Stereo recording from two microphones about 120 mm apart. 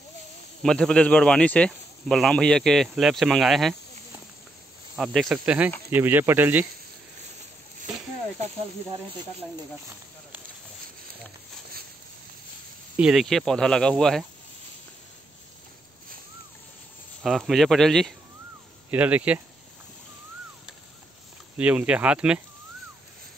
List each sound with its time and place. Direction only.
0.6 s speech: 5° left (ahead or behind)
4.9 s speech: centre (ahead or behind)
5.3 s speech: 10° right (ahead or behind)
12.9 s speech: 5° right (ahead or behind)
17.2 s speech: centre (ahead or behind)
18.9 s speech: 10° right (ahead or behind)
21.5 s speech: 10° right (ahead or behind)